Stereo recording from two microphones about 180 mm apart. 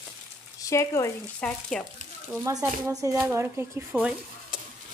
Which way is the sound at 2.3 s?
15° right (ahead or behind).